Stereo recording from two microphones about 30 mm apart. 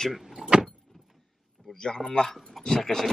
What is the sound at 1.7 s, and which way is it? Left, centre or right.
Speech, left.